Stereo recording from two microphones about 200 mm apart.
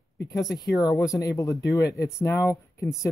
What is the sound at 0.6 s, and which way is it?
Speech, 15° left (ahead or behind).